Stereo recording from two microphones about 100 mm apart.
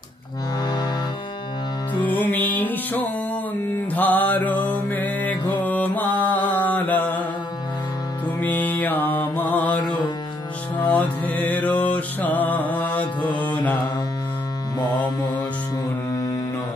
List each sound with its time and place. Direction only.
2.0 s music: 20° left (ahead or behind)
3.9 s mantra: 20° left (ahead or behind)
4.6 s music: 15° left (ahead or behind)
6.6 s mantra: 15° left (ahead or behind)
8.4 s music: 15° left (ahead or behind)
9.4 s mantra: 15° left (ahead or behind)
10.9 s music: 15° left (ahead or behind)
13.3 s mantra: 15° left (ahead or behind)